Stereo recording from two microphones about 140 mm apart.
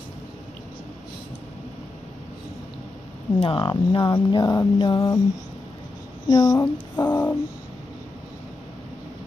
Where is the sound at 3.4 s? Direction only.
40° left (ahead or behind).